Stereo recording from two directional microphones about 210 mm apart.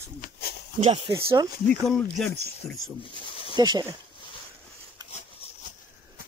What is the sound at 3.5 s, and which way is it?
Speech, 20° right (ahead or behind).